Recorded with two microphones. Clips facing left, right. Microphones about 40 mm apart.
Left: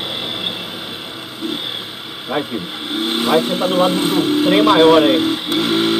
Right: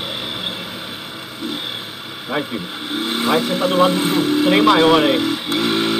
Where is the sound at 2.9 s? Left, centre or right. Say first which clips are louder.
Left 2 dB; left.